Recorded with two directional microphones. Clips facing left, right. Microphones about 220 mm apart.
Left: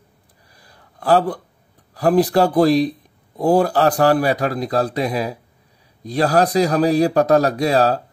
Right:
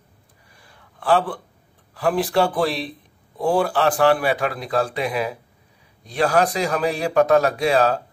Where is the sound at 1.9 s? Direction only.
40° left (ahead or behind).